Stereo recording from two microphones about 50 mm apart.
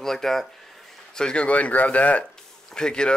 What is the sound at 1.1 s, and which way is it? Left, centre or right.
Speech, centre.